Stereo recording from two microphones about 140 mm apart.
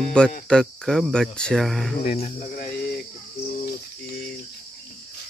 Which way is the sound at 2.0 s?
45° left (ahead or behind).